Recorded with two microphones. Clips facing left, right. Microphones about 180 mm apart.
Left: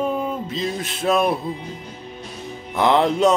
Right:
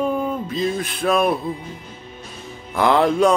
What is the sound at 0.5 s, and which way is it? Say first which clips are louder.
Music: right 3 dB; 25° left (ahead or behind).